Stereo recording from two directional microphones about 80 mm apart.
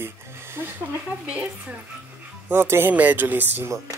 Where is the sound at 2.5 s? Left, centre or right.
Right.